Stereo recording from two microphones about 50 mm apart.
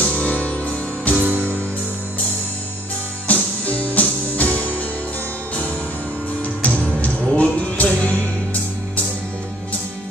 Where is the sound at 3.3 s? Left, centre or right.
Left.